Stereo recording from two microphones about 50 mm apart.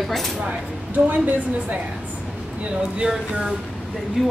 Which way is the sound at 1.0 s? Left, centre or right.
Right.